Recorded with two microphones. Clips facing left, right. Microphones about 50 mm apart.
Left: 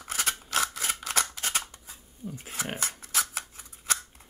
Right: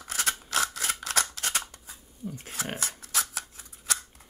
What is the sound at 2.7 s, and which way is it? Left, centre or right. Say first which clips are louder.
Dog: left 1 dB; left.